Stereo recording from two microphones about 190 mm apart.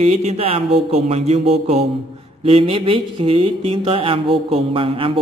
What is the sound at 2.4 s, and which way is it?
Mantra, 30° right (ahead or behind).